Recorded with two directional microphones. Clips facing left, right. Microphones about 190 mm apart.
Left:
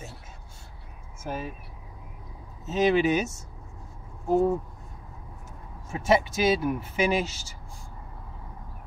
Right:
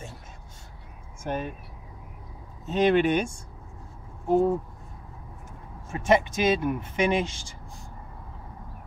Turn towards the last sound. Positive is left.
turn(degrees=5)  # may be behind; listen again after turning